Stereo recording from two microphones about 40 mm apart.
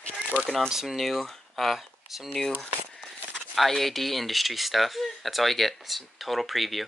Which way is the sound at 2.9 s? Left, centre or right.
Centre.